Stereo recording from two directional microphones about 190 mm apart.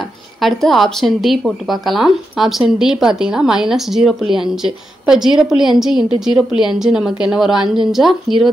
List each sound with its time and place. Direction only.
0.4 s a woman's voice: centre (ahead or behind)